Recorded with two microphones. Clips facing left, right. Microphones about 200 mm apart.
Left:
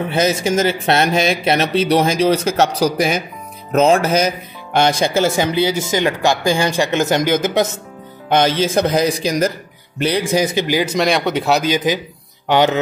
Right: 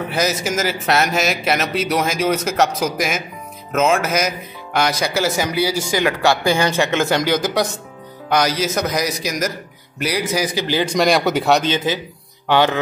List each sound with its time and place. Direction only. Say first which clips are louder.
0.1 s speech: left 5 dB; 25° left (ahead or behind)
10.7 s speech: right 4 dB; 10° left (ahead or behind)